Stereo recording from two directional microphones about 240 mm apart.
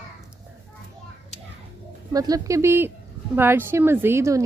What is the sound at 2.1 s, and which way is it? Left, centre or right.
A woman's voice, centre.